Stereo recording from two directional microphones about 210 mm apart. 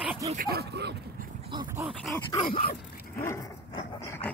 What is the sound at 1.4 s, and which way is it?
Dog, 20° right (ahead or behind).